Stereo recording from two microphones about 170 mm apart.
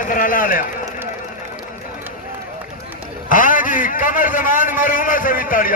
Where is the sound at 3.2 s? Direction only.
50° left (ahead or behind).